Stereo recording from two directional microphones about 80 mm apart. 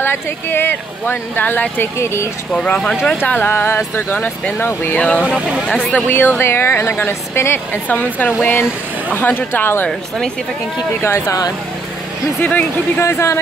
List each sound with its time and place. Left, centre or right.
0.0 s speech: left
2.5 s speech: centre
3.3 s speech: left
5.7 s speech: centre
6.0 s speech: left
9.8 s speech: centre
11.0 s speech: left
11.2 s speech: left
12.4 s speech: centre
13.0 s speech: left